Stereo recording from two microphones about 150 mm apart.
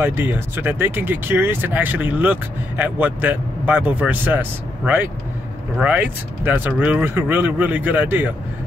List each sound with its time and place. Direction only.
0.0 s speech: 15° right (ahead or behind)